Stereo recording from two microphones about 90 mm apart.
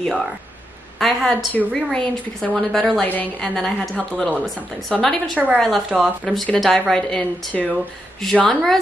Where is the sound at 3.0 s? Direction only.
20° left (ahead or behind).